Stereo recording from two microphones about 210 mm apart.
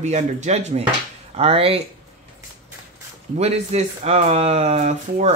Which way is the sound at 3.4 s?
30° right (ahead or behind).